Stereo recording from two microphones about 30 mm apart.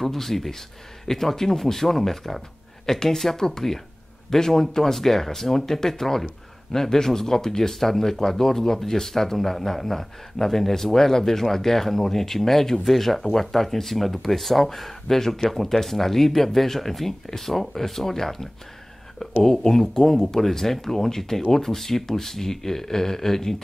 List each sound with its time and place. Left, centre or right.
0.0 s speech: centre
20.0 s speech: centre